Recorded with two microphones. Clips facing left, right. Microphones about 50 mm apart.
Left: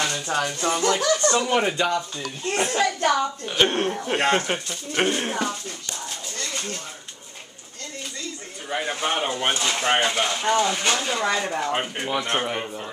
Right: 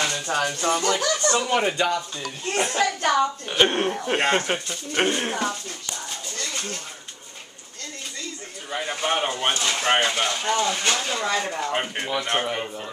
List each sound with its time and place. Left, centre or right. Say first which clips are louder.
0.0 s speech: even; centre
3.1 s speech: right 1 dB; centre
8.6 s a man's voice: left 2 dB; centre
8.9 s speech: right 3 dB; centre
9.5 s speech: even; centre
10.4 s speech: left 4 dB; centre